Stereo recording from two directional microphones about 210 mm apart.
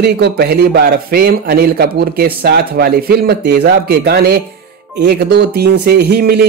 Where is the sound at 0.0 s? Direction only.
50° right (ahead or behind).